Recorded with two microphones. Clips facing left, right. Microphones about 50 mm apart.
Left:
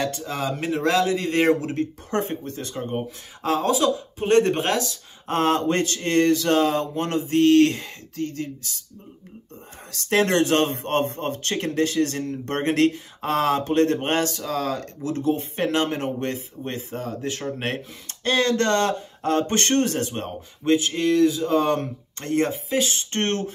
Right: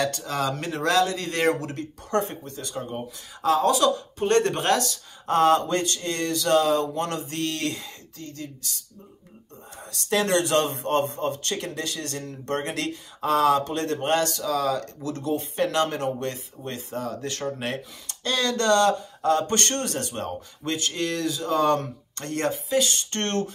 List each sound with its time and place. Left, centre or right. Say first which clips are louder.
0.0 s speech: right 1 dB; centre; by 3.7 s left
3.7 s speech: even; centre
5.3 s speech: right 1 dB; left
10.0 s speech: left 3 dB; left
17.6 s speech: left 2 dB; left